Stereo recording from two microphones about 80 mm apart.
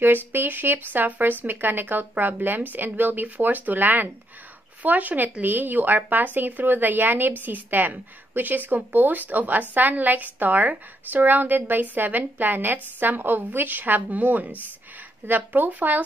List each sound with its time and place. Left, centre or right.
0.0 s speech: right